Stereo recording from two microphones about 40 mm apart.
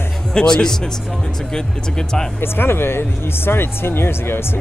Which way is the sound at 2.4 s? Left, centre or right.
Left.